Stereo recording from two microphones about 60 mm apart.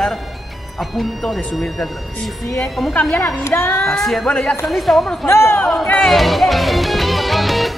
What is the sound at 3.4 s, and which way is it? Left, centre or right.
Speech, left.